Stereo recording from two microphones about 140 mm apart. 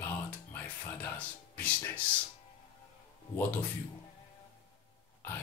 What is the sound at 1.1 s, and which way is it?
Speech, 10° left (ahead or behind).